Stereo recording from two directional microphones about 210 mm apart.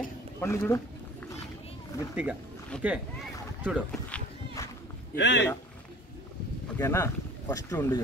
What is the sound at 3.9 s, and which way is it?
Run, 5° left (ahead or behind).